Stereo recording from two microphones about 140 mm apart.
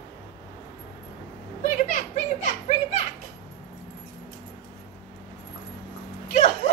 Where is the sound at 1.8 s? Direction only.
60° left (ahead or behind).